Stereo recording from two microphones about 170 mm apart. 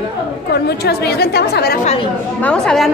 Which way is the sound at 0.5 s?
70° left (ahead or behind).